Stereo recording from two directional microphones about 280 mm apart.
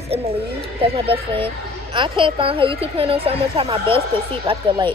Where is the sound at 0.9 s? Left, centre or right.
Centre.